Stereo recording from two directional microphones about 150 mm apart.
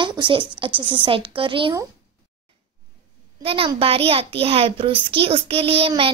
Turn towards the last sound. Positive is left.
turn(degrees=-40)  # may be behind; listen again after turning